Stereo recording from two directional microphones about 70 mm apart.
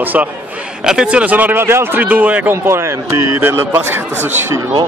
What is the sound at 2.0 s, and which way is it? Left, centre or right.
Speech, right.